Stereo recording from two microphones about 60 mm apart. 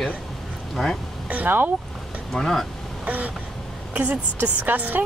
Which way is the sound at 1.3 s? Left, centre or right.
Right.